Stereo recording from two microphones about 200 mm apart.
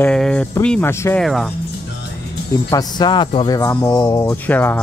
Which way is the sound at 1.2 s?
Centre (ahead or behind).